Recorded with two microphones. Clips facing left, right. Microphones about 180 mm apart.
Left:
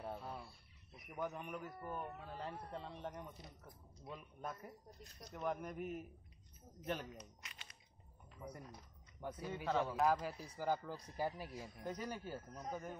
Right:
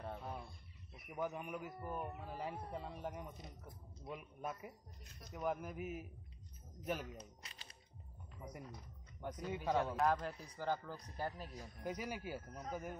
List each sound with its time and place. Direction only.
0.0 s chicken: 5° left (ahead or behind)
0.9 s speech: 5° right (ahead or behind)
7.2 s speech: 30° right (ahead or behind)
8.4 s speech: 10° right (ahead or behind)
9.2 s speech: 10° left (ahead or behind)
9.7 s speech: 15° right (ahead or behind)
9.9 s speech: 5° left (ahead or behind)
11.8 s speech: 10° right (ahead or behind)